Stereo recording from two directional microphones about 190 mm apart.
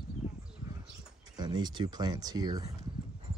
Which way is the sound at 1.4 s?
20° right (ahead or behind).